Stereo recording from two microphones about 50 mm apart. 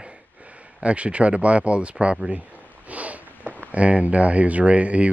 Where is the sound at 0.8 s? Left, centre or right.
Right.